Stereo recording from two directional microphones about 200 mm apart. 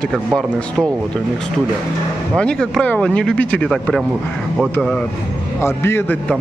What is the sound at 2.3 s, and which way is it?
A man's voice, 5° left (ahead or behind).